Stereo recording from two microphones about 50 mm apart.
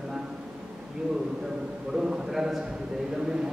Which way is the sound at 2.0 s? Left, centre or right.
Centre.